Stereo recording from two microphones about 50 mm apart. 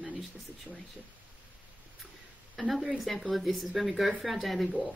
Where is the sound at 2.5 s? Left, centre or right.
Centre.